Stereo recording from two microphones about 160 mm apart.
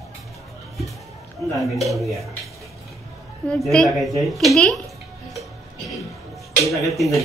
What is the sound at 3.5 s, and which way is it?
Speech, centre (ahead or behind).